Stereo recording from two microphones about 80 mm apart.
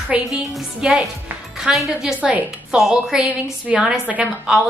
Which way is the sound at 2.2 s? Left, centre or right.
Centre.